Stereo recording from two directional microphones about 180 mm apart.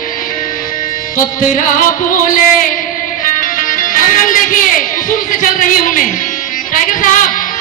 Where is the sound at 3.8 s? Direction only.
45° left (ahead or behind).